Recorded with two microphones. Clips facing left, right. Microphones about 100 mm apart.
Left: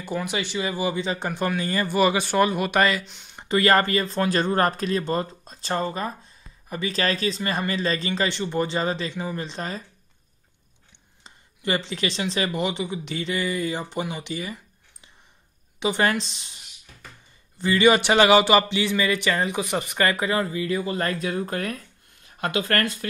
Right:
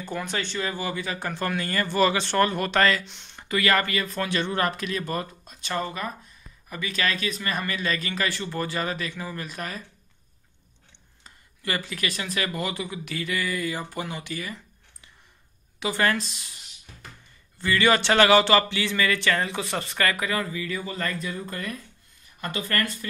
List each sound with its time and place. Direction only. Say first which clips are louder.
0.0 s speech: left 3 dB; 10° left (ahead or behind)
3.0 s speech: left 3 dB; 5° left (ahead or behind)
3.3 s speech: left 4 dB; 30° left (ahead or behind)
11.2 s speech: left 5 dB; 25° left (ahead or behind)
17.6 s speech: left 4 dB; 20° left (ahead or behind); by 21.2 s 45° left (ahead or behind)
21.2 s speech: left 6 dB; 60° left (ahead or behind)